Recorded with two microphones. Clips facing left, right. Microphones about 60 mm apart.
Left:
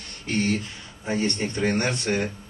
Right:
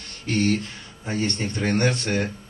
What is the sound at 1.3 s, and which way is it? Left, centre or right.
Speech, left.